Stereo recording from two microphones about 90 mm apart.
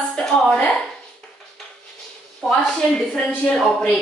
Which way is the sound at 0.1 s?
5° left (ahead or behind).